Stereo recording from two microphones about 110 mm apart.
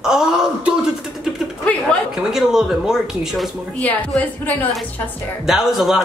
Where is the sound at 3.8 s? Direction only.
15° left (ahead or behind).